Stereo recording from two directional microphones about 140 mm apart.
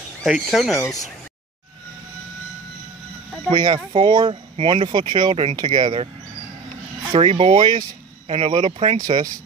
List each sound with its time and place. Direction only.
0.2 s speech: centre (ahead or behind)
3.4 s speech: 30° right (ahead or behind)
7.1 s speech: 45° right (ahead or behind)
7.5 s speech: 30° right (ahead or behind)
8.3 s speech: 45° right (ahead or behind)
8.9 s speech: 70° right (ahead or behind)